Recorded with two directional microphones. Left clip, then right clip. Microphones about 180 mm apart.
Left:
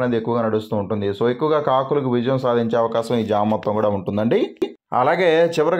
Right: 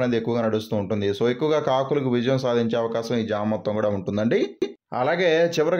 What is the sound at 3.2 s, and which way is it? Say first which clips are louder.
A man's voice: left 6 dB; 5° left (ahead or behind).